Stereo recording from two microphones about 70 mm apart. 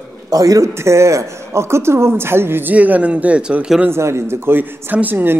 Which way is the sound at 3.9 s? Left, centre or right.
Right.